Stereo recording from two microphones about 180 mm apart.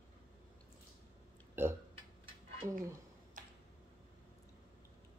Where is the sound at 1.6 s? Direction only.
10° right (ahead or behind).